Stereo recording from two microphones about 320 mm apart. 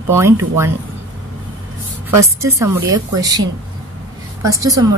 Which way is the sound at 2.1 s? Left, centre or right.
Centre.